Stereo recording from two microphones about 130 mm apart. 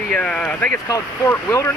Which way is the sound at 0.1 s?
5° left (ahead or behind).